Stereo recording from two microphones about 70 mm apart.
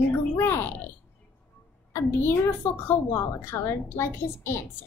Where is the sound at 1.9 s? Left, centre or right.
Left.